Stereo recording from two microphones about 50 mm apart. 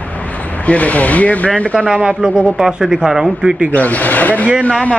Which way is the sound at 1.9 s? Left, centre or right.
Centre.